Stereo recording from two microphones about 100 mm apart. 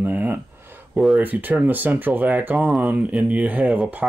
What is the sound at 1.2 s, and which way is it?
Speech, 15° right (ahead or behind).